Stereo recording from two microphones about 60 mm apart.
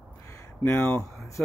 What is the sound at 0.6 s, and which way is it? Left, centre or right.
Speech, left.